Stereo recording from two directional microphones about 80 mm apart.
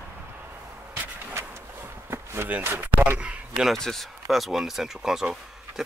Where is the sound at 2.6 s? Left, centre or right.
Right.